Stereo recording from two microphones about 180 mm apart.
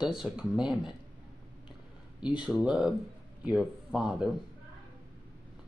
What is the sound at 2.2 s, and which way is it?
Speech, 5° right (ahead or behind).